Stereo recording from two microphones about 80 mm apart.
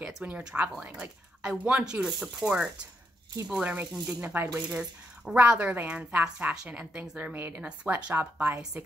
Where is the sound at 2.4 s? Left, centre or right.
Centre.